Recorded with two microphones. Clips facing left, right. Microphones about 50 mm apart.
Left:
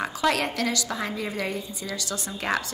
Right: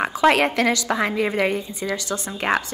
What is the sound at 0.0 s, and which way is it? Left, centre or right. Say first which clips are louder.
A woman's voice: right 7 dB; right.